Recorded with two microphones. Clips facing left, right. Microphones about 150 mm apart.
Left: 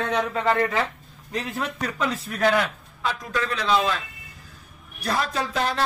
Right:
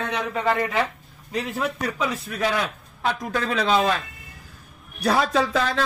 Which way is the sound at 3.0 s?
60° right (ahead or behind).